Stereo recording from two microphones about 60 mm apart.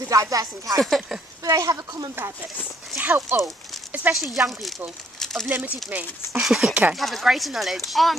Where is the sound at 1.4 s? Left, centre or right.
Right.